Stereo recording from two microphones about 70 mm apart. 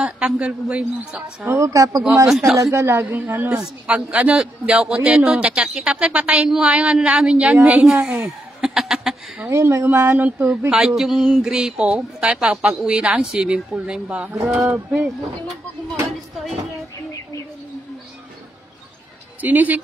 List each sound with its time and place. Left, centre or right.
0.0 s speech: centre
1.4 s speech: right
1.7 s speech: right
2.2 s a man's voice: centre
2.6 s speech: right
3.4 s speech: centre
4.4 s speech: centre
8.0 s fowl: centre
9.5 s speech: right
10.7 s speech: centre
16.1 s a sound: centre
19.4 s speech: right